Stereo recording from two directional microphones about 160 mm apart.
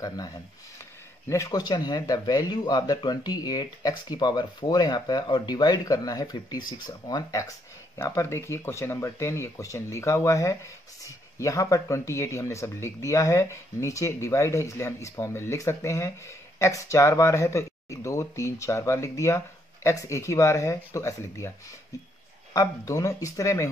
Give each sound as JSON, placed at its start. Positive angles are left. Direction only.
{"t": 1.2, "sound": "speech", "side_deg": 20}